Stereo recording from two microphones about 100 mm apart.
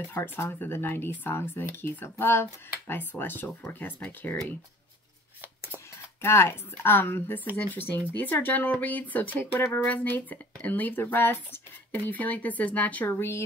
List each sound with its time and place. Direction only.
0.1 s speech: 25° left (ahead or behind)
6.2 s speech: 25° left (ahead or behind)